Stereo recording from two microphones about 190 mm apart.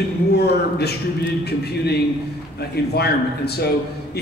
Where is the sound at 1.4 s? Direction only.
60° left (ahead or behind).